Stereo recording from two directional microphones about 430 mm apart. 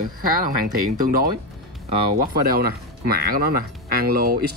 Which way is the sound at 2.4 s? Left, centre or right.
Right.